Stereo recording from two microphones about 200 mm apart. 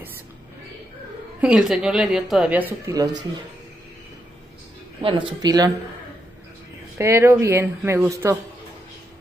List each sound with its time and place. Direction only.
1.4 s speech: 5° right (ahead or behind)
5.0 s speech: 25° right (ahead or behind)
7.0 s speech: 15° right (ahead or behind)